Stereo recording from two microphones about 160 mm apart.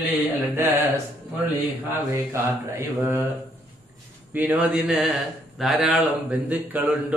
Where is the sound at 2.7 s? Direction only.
15° right (ahead or behind).